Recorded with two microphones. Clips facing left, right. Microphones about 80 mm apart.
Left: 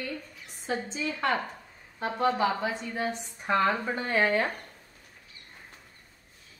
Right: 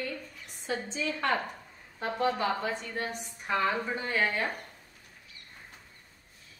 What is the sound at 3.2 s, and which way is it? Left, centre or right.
A woman's voice, left.